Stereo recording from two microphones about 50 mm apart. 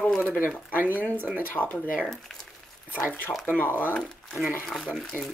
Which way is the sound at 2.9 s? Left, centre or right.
Left.